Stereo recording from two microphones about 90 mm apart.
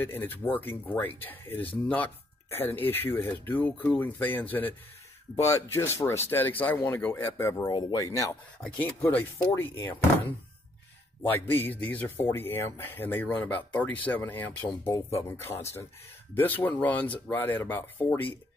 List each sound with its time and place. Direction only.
0.0 s speech: 20° left (ahead or behind); by 8.4 s 35° left (ahead or behind)
8.6 s speech: 15° left (ahead or behind)
11.2 s speech: 25° left (ahead or behind)
14.9 s speech: 30° left (ahead or behind)